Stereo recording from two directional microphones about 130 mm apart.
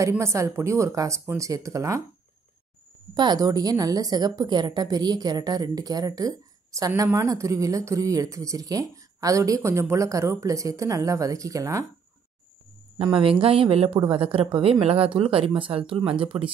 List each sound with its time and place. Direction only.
0.2 s speech: 20° right (ahead or behind)
3.2 s a woman's voice: 30° right (ahead or behind)
13.0 s a woman's voice: 40° right (ahead or behind)